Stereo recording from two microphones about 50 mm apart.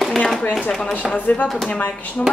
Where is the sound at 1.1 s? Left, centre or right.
Left.